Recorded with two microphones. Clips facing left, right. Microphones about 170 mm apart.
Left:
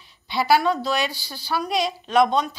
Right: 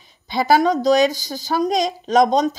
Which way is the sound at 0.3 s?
45° right (ahead or behind).